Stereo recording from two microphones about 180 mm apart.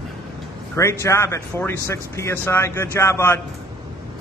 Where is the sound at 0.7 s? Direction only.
15° left (ahead or behind).